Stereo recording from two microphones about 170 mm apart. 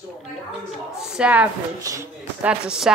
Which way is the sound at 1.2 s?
10° right (ahead or behind).